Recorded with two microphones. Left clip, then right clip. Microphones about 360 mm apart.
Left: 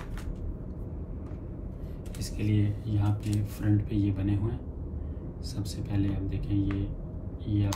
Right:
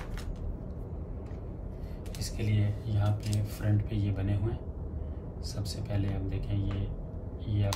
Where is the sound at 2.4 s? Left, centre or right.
Centre.